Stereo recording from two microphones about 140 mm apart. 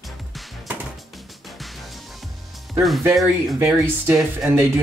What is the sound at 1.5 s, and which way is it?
Music, centre (ahead or behind).